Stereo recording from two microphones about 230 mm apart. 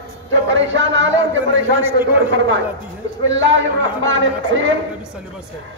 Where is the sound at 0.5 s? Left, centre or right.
Right.